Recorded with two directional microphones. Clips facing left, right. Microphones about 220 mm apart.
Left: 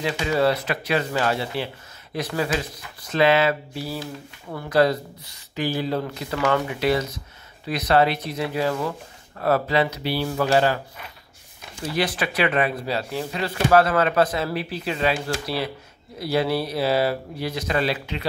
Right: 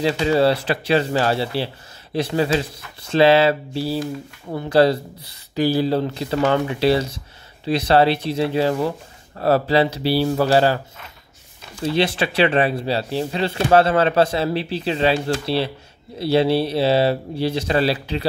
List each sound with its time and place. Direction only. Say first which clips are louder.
0.0 s speech: right 4 dB; 30° right (ahead or behind)
11.8 s speech: right 5 dB; 25° right (ahead or behind)